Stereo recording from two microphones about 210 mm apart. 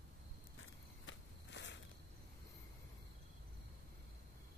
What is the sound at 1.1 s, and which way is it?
Walk, 60° left (ahead or behind).